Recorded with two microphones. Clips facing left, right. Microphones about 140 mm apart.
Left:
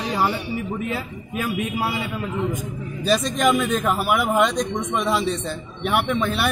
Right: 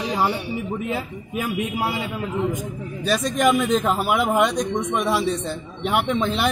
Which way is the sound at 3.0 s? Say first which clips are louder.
Even; 5° right (ahead or behind).